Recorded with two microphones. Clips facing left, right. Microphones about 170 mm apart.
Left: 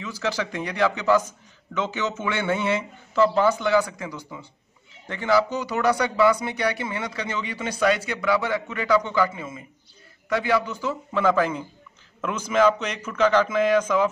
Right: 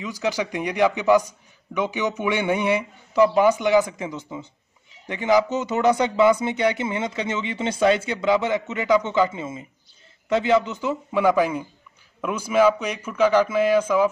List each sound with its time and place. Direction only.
0.0 s speech: 15° right (ahead or behind)